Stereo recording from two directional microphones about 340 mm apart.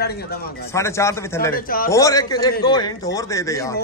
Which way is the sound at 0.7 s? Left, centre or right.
Centre.